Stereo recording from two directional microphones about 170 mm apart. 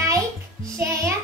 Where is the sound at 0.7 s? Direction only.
15° right (ahead or behind).